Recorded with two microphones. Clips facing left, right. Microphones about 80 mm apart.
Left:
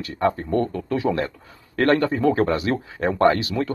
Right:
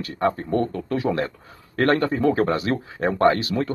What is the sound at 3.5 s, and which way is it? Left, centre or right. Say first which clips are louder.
Speech: even; right.